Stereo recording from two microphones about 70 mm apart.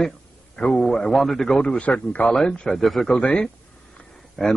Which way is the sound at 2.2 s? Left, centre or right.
Centre.